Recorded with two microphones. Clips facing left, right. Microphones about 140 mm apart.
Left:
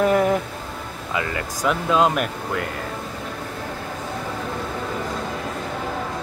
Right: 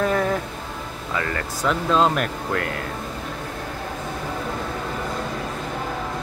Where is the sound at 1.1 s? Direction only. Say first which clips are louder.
Left 1 dB; 10° left (ahead or behind).